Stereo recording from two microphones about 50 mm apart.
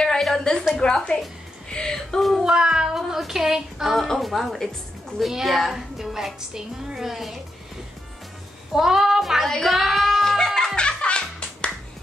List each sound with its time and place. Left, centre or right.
0.0 s a sound: centre
0.7 s a woman's voice: centre
2.4 s speech: centre
3.9 s a woman's voice: centre
8.7 s speech: centre
9.5 s music: centre